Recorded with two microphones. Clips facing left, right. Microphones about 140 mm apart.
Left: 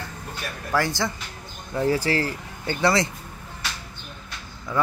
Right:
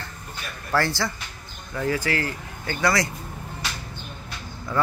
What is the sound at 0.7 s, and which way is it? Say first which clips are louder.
Speech: even; 15° left (ahead or behind).